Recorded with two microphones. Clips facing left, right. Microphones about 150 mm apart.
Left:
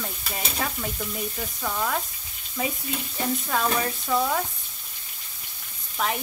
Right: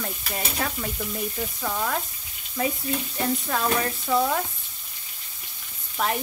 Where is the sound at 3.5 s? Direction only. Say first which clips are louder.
Even; 5° left (ahead or behind).